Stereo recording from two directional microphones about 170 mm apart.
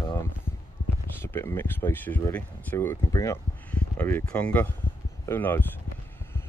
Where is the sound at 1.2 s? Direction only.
15° left (ahead or behind).